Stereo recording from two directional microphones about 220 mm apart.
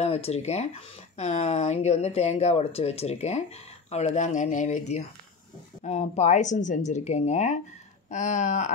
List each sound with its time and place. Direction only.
0.0 s speech: 30° left (ahead or behind)